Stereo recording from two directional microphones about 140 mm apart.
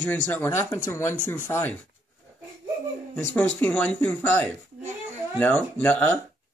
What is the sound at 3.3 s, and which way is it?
Speech, 10° left (ahead or behind).